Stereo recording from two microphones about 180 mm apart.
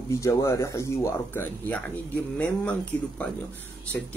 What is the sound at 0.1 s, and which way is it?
Speech, 15° left (ahead or behind).